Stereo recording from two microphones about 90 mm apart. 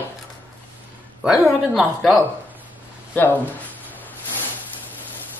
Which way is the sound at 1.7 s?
Centre (ahead or behind).